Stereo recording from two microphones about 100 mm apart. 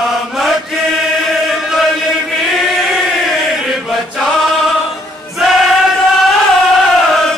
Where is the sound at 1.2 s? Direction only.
Centre (ahead or behind).